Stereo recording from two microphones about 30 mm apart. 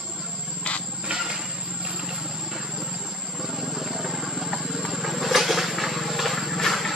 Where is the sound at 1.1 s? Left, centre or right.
Right.